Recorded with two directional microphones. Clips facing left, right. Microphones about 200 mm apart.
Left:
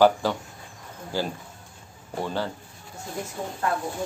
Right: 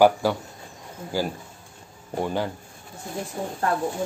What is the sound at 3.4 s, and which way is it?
Speech, 35° right (ahead or behind).